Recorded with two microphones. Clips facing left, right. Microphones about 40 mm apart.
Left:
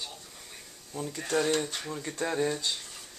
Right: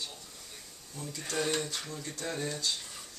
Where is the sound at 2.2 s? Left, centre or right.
Left.